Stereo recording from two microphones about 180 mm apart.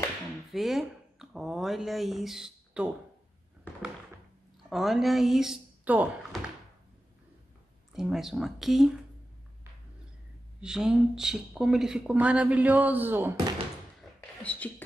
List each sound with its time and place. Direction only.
0.5 s speech: centre (ahead or behind)
3.7 s thunk: 10° left (ahead or behind)
4.6 s speech: centre (ahead or behind)
7.9 s speech: centre (ahead or behind)
10.6 s speech: 5° right (ahead or behind)
14.4 s speech: 10° left (ahead or behind)